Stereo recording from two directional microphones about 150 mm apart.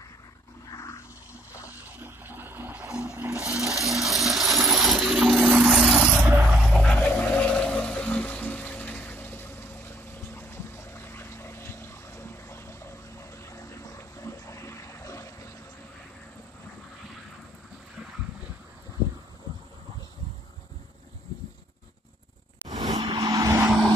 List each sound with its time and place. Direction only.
0.7 s roar: 20° left (ahead or behind)
2.0 s toilet flush: 15° right (ahead or behind)
3.1 s music: 15° right (ahead or behind)
3.7 s coin: 20° right (ahead or behind)
4.0 s a sound: centre (ahead or behind)
6.7 s music: 5° left (ahead or behind)
13.5 s a sound: 20° left (ahead or behind)
22.7 s vehicle: 25° right (ahead or behind)